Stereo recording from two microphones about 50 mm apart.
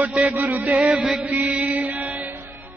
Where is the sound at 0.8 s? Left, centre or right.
Centre.